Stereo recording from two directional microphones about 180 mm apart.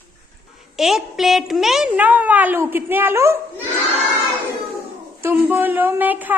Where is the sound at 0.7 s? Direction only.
Centre (ahead or behind).